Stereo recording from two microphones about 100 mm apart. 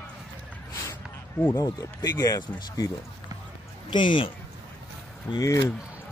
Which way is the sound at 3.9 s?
55° left (ahead or behind).